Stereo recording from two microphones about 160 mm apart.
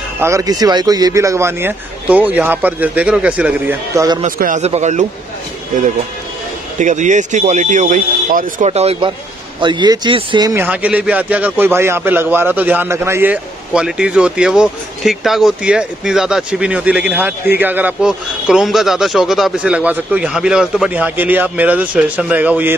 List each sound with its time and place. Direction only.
0.2 s a man's voice: 20° right (ahead or behind)
3.9 s speech: 20° right (ahead or behind)
4.4 s speech: 50° right (ahead or behind)
6.8 s speech: 50° right (ahead or behind)
8.6 s speech: 40° right (ahead or behind)
9.6 s speech: 30° right (ahead or behind)
10.5 s a man's voice: 10° right (ahead or behind)